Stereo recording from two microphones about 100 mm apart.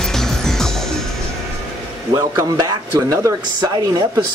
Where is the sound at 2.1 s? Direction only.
40° right (ahead or behind).